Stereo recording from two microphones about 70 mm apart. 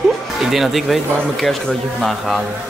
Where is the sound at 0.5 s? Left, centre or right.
Centre.